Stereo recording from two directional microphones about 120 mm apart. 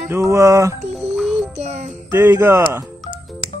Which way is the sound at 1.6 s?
65° right (ahead or behind).